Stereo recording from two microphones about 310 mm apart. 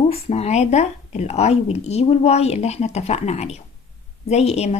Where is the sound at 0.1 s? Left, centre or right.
Centre.